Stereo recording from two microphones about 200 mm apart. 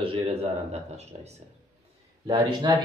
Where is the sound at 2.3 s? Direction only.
15° right (ahead or behind).